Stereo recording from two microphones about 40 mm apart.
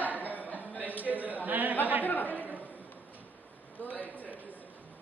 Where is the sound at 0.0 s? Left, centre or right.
Right.